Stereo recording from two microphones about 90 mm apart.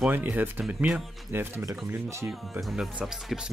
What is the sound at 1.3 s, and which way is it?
Speech, 30° right (ahead or behind).